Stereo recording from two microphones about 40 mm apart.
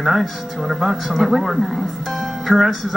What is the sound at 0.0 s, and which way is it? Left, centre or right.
Speech, centre.